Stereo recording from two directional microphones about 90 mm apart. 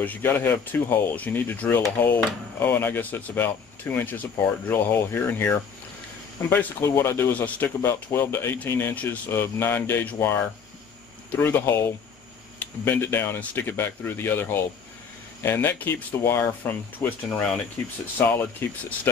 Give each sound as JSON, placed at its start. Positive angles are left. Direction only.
{"t": 0.0, "sound": "speech", "side_deg": 20}